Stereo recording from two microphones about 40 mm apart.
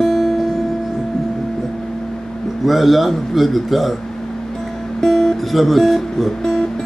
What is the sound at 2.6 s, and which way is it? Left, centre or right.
Speech, centre.